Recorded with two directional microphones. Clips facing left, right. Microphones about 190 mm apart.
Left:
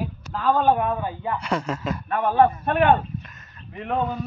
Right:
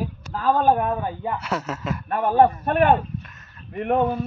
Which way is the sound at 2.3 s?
40° right (ahead or behind).